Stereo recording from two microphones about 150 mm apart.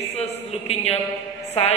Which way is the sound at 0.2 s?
45° left (ahead or behind).